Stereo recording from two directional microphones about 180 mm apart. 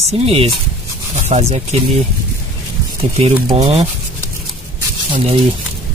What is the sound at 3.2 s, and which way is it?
Speech, 35° right (ahead or behind).